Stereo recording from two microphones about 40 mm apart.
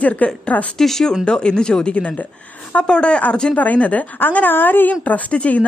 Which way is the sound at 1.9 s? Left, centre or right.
Left.